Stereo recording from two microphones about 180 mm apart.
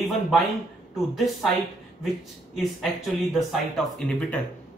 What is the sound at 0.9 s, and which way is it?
Speech, centre (ahead or behind).